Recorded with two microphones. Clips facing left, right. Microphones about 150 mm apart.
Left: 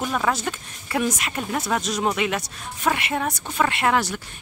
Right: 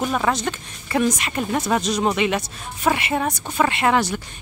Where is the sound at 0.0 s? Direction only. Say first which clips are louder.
Right 3 dB; 10° right (ahead or behind).